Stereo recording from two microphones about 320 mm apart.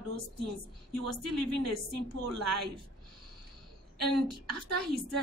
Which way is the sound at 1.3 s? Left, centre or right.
Right.